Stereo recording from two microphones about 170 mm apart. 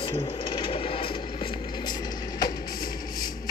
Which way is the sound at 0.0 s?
30° left (ahead or behind).